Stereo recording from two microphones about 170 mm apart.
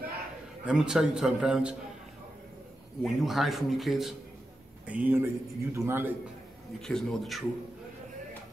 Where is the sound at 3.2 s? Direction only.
Centre (ahead or behind).